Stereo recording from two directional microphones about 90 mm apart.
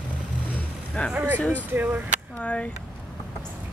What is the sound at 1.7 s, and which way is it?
Speech, 20° right (ahead or behind).